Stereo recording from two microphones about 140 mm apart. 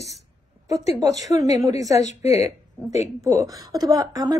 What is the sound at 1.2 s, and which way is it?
Speech, 25° right (ahead or behind).